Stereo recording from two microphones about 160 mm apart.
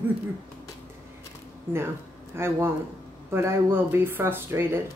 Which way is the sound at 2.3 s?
15° right (ahead or behind).